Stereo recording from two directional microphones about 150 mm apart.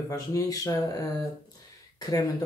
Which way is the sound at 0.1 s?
25° left (ahead or behind).